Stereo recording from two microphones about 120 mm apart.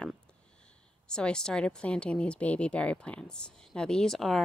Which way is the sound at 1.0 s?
5° left (ahead or behind).